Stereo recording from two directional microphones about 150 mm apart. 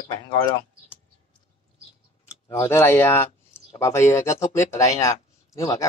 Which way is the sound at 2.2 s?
15° left (ahead or behind).